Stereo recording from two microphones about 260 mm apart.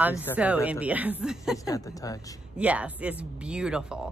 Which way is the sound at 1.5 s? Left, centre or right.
Centre.